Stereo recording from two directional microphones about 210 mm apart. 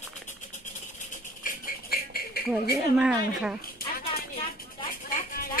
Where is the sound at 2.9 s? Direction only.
5° right (ahead or behind).